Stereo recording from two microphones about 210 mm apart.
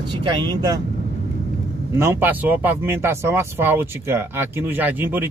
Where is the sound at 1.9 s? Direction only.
10° right (ahead or behind).